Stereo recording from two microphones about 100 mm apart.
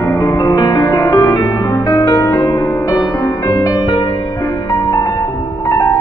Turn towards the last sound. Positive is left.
turn(degrees=30)  # may be behind; listen again after turning